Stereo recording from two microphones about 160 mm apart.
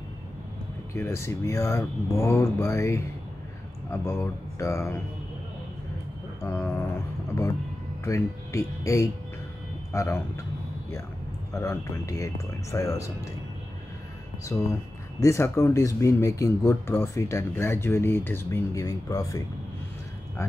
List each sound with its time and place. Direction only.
0.9 s speech: 15° left (ahead or behind)
6.4 s speech: 15° left (ahead or behind)
8.0 s speech: 20° left (ahead or behind)
11.5 s speech: 15° left (ahead or behind)
14.5 s speech: 10° left (ahead or behind)